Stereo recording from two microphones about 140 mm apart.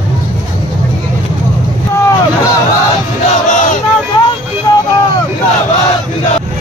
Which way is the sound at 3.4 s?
65° left (ahead or behind).